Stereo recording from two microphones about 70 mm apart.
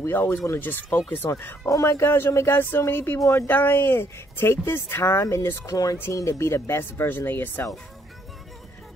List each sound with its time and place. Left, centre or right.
0.0 s speech: left
1.7 s speech: left
5.7 s speech: left